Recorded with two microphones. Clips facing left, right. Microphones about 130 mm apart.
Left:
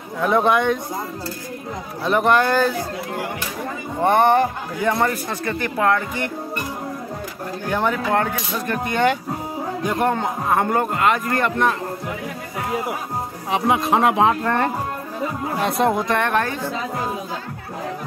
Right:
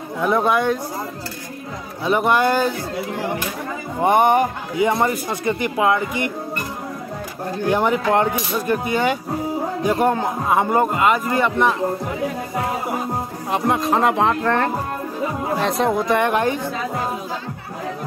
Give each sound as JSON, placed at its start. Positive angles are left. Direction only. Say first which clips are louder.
{"t": 0.2, "sound": "speech", "louder": "left 1 dB", "side_deg": -5}
{"t": 2.0, "sound": "a man's voice", "louder": "even", "side_deg": -10}
{"t": 4.0, "sound": "a man's voice", "louder": "even", "side_deg": -15}
{"t": 7.7, "sound": "a man's voice", "louder": "right 2 dB", "side_deg": -15}
{"t": 13.5, "sound": "speech", "louder": "left 1 dB", "side_deg": 5}
{"t": 16.2, "sound": "a man's voice", "louder": "right 2 dB", "side_deg": -15}